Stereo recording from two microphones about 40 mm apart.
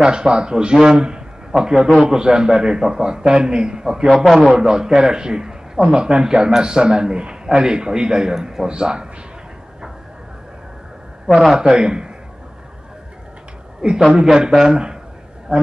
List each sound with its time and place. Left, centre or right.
0.0 s a man's voice: right
4.1 s a man's voice: centre
4.6 s a man's voice: centre
11.3 s a man's voice: centre
13.7 s a woman's voice: centre